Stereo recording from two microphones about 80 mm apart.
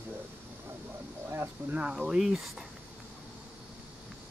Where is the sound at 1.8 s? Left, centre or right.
Centre.